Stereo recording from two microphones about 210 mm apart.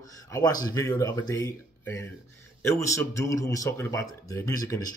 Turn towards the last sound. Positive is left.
turn(degrees=15)  # may be behind; listen again after turning